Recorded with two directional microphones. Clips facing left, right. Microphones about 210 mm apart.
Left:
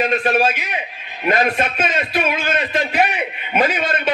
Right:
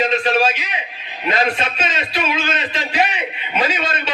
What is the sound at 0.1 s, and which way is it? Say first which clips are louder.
A man's voice: even; 55° left (ahead or behind).